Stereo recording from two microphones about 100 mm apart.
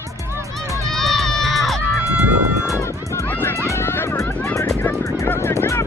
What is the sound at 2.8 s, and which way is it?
Music, 20° left (ahead or behind).